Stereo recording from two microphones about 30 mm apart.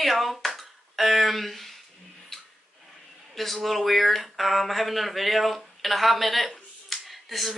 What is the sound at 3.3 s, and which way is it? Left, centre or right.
Speech, centre.